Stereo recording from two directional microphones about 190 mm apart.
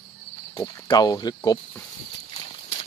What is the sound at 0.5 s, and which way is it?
Speech, 20° left (ahead or behind).